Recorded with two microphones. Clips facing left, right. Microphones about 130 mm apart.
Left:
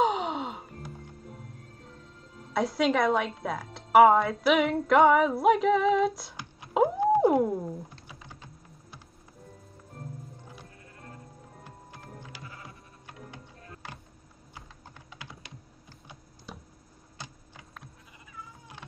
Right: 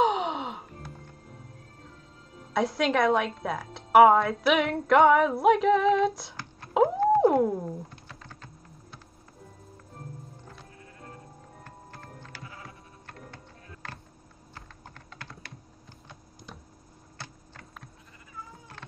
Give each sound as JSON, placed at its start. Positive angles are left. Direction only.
{"t": 0.0, "sound": "music", "side_deg": 0}
{"t": 2.5, "sound": "a woman's voice", "side_deg": 0}
{"t": 6.7, "sound": "a sound", "side_deg": 0}
{"t": 7.2, "sound": "music", "side_deg": 0}
{"t": 7.9, "sound": "typing", "side_deg": 15}
{"t": 11.6, "sound": "music", "side_deg": 15}
{"t": 13.0, "sound": "a sound", "side_deg": 10}
{"t": 14.5, "sound": "typing", "side_deg": 10}
{"t": 17.2, "sound": "a sound", "side_deg": 15}